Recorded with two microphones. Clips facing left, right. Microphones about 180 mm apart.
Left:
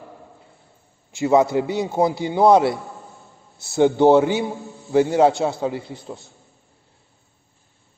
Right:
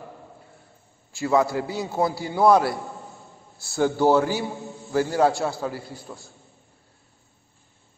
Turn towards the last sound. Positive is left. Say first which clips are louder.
# left 4 dB
turn(degrees=20)  # may be behind; listen again after turning